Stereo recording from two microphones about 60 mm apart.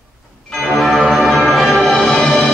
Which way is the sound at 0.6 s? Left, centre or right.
Centre.